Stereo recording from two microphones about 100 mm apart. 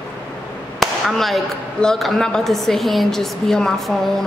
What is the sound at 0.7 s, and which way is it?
A woman's voice, centre (ahead or behind).